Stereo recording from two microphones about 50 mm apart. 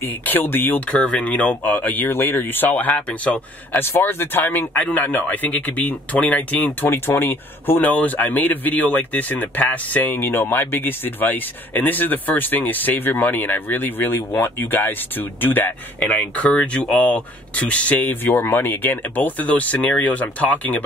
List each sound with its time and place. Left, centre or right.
0.2 s speech: left
0.7 s speech: left
7.1 s speech: left
7.9 s speech: left
10.1 s speech: left
16.1 s speech: left
17.9 s speech: left